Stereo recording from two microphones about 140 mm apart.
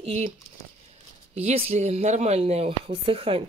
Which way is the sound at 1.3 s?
45° right (ahead or behind).